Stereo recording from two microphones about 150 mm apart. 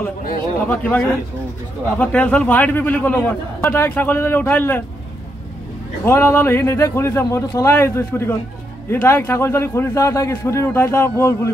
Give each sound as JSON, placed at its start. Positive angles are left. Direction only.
{"t": 0.7, "sound": "a man's voice", "side_deg": 10}
{"t": 6.0, "sound": "a man's voice", "side_deg": 15}